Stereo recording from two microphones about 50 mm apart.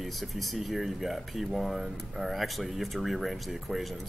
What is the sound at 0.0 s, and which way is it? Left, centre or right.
Speech, centre.